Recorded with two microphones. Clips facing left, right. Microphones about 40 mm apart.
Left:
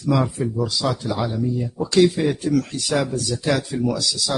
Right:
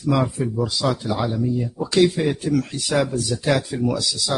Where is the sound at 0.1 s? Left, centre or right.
Centre.